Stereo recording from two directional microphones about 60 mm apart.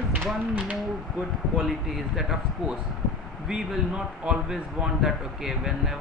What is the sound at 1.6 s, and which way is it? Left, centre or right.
A man's voice, centre.